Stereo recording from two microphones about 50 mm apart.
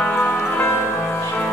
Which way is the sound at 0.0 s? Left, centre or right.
Left.